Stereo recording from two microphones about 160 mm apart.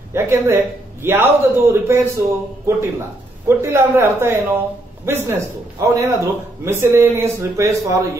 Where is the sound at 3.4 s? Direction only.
15° right (ahead or behind).